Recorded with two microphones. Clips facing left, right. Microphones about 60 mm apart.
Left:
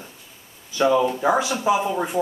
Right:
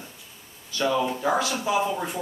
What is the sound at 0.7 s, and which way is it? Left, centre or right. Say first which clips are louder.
Speech: left 6 dB; left.